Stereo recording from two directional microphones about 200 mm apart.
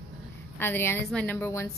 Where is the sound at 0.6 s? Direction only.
10° left (ahead or behind).